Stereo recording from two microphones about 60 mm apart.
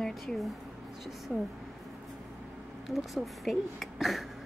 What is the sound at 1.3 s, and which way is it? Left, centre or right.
Speech, centre.